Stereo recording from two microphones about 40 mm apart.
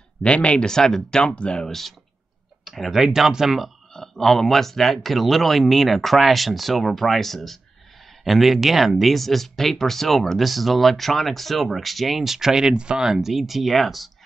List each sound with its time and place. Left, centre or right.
0.2 s speech: left
0.7 s speech: centre
1.2 s speech: left
1.7 s speech: centre
3.9 s speech: centre